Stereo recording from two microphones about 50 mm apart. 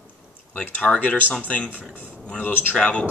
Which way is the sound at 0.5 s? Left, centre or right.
Left.